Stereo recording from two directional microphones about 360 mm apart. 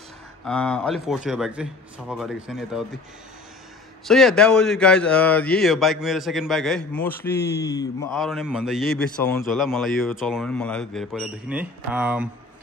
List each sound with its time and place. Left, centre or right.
0.5 s speech: centre
4.0 s speech: centre
7.3 s speech: left
7.6 s speech: centre